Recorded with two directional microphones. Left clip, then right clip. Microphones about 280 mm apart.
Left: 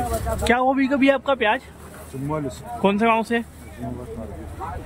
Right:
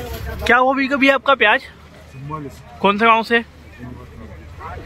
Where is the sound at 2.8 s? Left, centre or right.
Centre.